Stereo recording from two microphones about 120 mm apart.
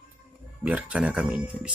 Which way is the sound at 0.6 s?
10° right (ahead or behind).